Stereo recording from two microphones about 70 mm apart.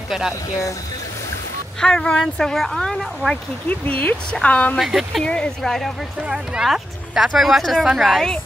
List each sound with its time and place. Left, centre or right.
1.8 s speech: centre
3.6 s speech: left
4.7 s a woman's voice: centre
5.2 s a woman's voice: centre
6.2 s a woman's voice: centre